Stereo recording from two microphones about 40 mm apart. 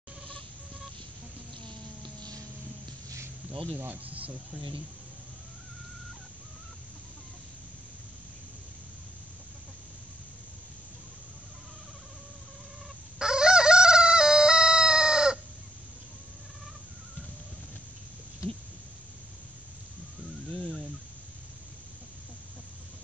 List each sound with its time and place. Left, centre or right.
1.7 s a sound: left
3.7 s speech: right
13.2 s fowl: centre